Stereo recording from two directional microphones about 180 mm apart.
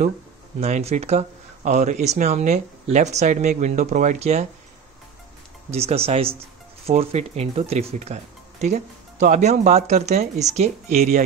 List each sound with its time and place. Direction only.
0.6 s speech: 35° right (ahead or behind)
5.7 s speech: 35° right (ahead or behind)